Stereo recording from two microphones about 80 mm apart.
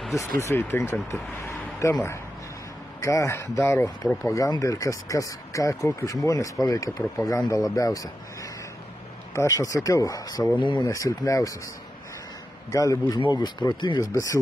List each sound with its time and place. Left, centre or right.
0.1 s speech: left
3.0 s speech: left
10.6 s speech: left
10.9 s speech: left
12.7 s speech: left
13.3 s speech: left